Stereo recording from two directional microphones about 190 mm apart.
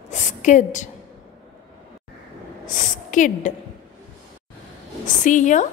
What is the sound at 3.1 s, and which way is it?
Speech, 40° left (ahead or behind).